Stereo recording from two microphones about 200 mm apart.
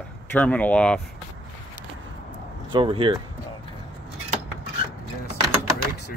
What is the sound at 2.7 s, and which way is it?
Speech, 25° right (ahead or behind).